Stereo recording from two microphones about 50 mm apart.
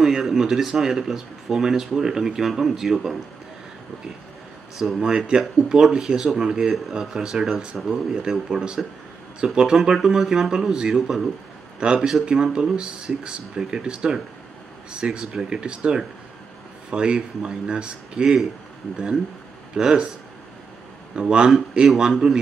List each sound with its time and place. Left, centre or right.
0.0 s speech: centre
4.7 s speech: centre
8.2 s speech: centre
19.7 s a man's voice: centre
21.1 s speech: centre
21.5 s speech: centre